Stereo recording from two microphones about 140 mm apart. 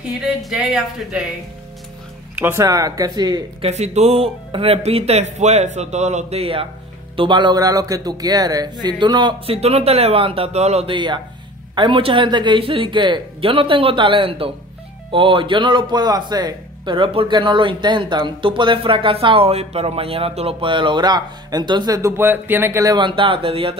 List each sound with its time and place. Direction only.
0.0 s speech: 5° right (ahead or behind)
2.3 s a man's voice: 15° right (ahead or behind)
3.6 s a man's voice: 50° right (ahead or behind); by 9.6 s 30° right (ahead or behind)
9.6 s speech: 45° right (ahead or behind)